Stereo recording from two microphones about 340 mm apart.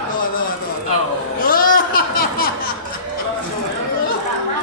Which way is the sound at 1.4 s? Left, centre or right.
Left.